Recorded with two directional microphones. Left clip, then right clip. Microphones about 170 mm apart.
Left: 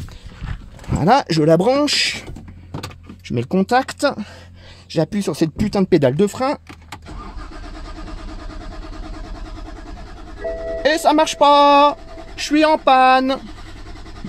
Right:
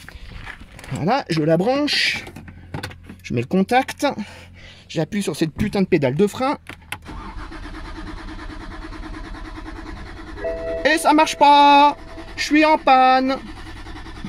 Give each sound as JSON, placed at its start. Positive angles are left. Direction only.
{"t": 0.9, "sound": "speech", "side_deg": 20}
{"t": 3.3, "sound": "speech", "side_deg": 0}
{"t": 10.8, "sound": "speech", "side_deg": -5}